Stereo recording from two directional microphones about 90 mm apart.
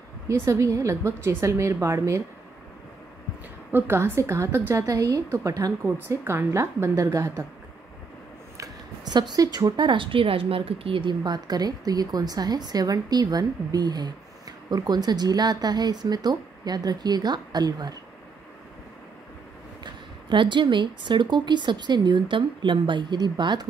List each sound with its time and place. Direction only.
0.3 s a woman's voice: 35° right (ahead or behind)
3.7 s a woman's voice: 25° right (ahead or behind)
6.0 s a woman's voice: 25° right (ahead or behind)
8.5 s speech: 50° right (ahead or behind)
19.8 s speech: 60° right (ahead or behind)